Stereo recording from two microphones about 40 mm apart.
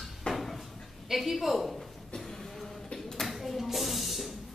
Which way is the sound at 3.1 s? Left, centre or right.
Centre.